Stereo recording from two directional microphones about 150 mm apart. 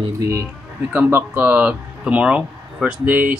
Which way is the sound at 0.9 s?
10° right (ahead or behind).